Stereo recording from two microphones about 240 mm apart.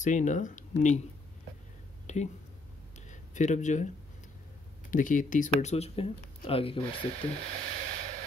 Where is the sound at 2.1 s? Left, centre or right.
Left.